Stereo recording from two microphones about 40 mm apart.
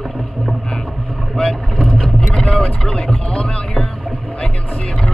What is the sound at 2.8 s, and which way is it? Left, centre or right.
Boat, left.